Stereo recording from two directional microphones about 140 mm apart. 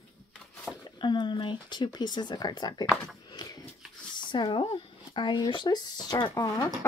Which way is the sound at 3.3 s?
30° left (ahead or behind).